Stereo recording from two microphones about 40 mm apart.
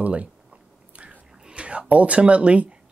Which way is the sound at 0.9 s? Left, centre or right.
Right.